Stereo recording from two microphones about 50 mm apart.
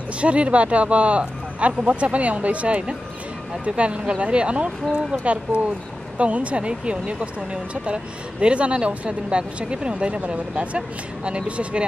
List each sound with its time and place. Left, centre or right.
0.2 s speech: right